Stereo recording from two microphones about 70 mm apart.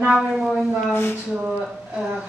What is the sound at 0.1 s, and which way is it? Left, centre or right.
Female singing, centre.